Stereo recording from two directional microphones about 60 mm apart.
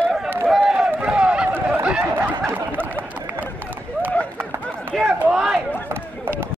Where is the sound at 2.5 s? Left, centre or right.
Right.